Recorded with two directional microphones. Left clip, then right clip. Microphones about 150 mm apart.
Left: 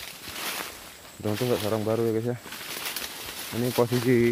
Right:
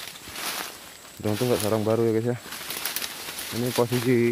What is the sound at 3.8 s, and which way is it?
Speech, 10° right (ahead or behind).